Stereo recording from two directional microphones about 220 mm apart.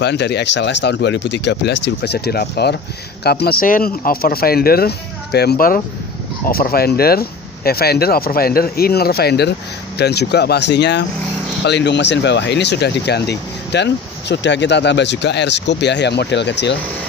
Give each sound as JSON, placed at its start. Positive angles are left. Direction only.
{"t": 0.0, "sound": "speech", "side_deg": 50}